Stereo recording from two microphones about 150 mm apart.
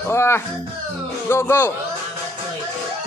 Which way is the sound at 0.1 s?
15° left (ahead or behind).